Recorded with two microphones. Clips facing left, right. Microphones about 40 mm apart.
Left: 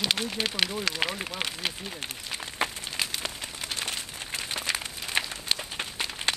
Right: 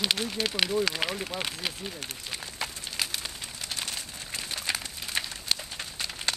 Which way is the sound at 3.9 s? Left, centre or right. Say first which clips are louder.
Left 3 dB; left.